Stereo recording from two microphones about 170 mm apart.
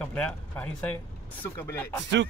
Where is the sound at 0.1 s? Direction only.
10° left (ahead or behind).